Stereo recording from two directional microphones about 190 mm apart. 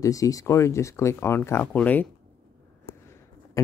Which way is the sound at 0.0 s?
15° left (ahead or behind).